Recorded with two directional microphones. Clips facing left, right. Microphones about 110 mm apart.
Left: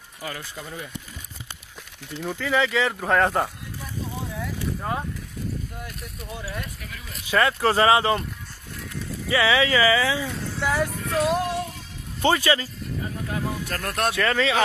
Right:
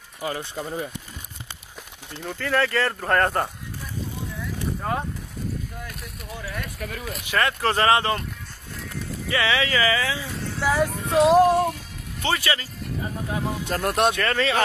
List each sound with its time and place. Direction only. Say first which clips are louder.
0.2 s speech: right 6 dB; 25° right (ahead or behind)
2.1 s speech: even; 5° left (ahead or behind)
6.8 s speech: right 8 dB; 50° right (ahead or behind)
7.3 s speech: left 2 dB; 15° left (ahead or behind)
9.3 s speech: left 3 dB; 15° left (ahead or behind)
10.3 s speech: right 2 dB; centre (ahead or behind)
11.1 s speech: right 9 dB; 30° right (ahead or behind)
12.3 s speech: left 4 dB; 25° left (ahead or behind)
13.3 s speech: right 3 dB; 20° right (ahead or behind)
14.2 s speech: left 1 dB; centre (ahead or behind)